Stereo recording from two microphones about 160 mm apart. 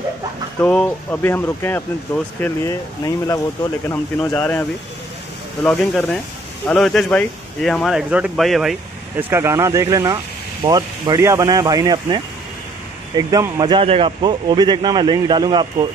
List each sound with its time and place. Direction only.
0.6 s speech: 10° left (ahead or behind)
4.3 s speech: 10° left (ahead or behind)
9.3 s speech: 15° right (ahead or behind)